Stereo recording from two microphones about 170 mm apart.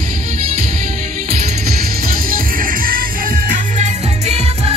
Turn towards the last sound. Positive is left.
turn(degrees=-35)  # may be behind; listen again after turning